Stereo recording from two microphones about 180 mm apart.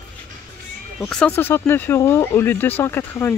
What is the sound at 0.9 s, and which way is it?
Speech, 5° left (ahead or behind).